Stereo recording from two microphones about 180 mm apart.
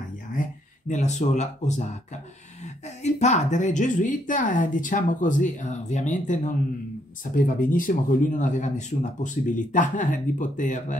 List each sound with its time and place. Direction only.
0.3 s a woman's voice: 45° left (ahead or behind)